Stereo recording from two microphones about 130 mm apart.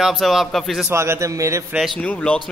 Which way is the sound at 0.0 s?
Centre (ahead or behind).